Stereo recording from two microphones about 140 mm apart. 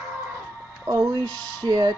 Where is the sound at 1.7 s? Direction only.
30° right (ahead or behind).